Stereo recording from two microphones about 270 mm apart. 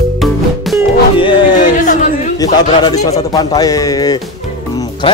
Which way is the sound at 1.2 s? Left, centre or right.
Centre.